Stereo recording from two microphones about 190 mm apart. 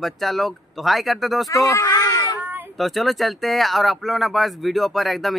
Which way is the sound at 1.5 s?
15° left (ahead or behind).